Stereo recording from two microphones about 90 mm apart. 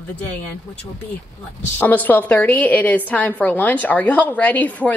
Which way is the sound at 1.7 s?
20° left (ahead or behind).